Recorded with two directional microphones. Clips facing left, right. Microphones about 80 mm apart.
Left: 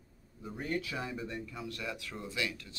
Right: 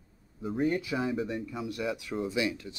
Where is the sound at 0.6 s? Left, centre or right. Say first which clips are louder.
Right 7 dB; centre.